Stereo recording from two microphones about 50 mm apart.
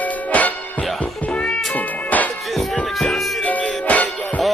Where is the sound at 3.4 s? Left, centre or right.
Left.